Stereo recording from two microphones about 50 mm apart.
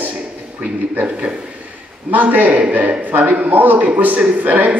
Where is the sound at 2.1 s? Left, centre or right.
Right.